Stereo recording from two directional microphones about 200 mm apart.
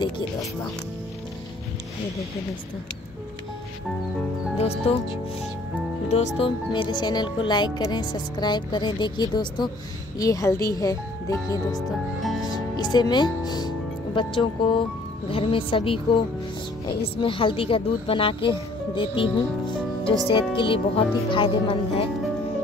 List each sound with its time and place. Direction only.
4.6 s speech: 30° left (ahead or behind)
6.0 s speech: 35° left (ahead or behind); by 11.8 s 15° left (ahead or behind)
12.4 s music: 20° left (ahead or behind)
15.2 s speech: 25° left (ahead or behind)